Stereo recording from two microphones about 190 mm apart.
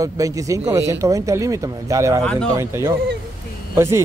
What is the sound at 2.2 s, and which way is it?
Speech, 5° left (ahead or behind).